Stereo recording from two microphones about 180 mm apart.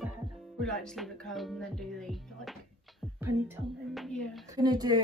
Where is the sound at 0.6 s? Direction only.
5° left (ahead or behind).